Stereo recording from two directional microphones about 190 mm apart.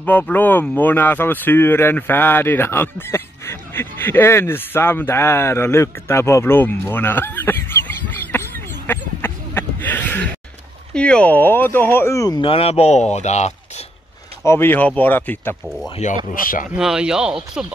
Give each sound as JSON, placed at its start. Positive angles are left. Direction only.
{"t": 0.0, "sound": "speech", "side_deg": 10}
{"t": 14.4, "sound": "speech", "side_deg": 15}
{"t": 16.3, "sound": "speech", "side_deg": 45}
{"t": 16.7, "sound": "speech", "side_deg": -5}